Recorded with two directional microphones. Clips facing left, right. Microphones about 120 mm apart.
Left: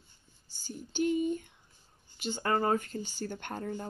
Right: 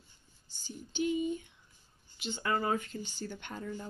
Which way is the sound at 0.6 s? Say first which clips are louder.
Left 3 dB; 45° left (ahead or behind).